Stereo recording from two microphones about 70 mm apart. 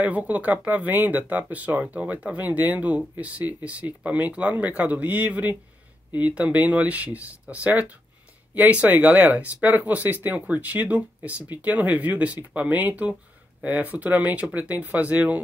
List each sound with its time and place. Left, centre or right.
0.0 s speech: right